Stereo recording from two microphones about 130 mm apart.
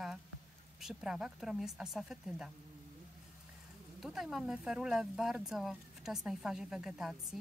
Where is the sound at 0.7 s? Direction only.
5° right (ahead or behind).